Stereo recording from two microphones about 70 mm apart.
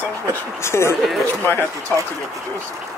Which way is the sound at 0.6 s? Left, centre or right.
Left.